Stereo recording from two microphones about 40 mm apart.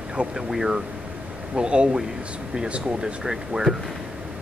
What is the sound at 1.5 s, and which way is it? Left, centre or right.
Speech, right.